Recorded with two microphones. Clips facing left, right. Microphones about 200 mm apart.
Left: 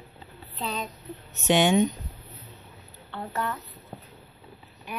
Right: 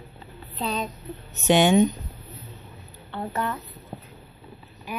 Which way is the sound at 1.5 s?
40° right (ahead or behind).